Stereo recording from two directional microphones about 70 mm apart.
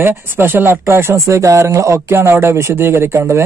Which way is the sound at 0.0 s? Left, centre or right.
Right.